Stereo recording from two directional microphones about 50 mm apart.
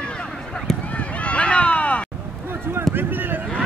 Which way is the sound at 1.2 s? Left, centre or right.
Left.